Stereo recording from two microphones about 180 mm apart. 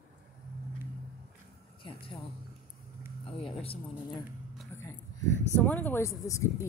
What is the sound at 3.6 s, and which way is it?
Speech, 30° left (ahead or behind).